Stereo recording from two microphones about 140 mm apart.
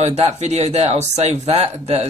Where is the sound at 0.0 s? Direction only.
55° right (ahead or behind).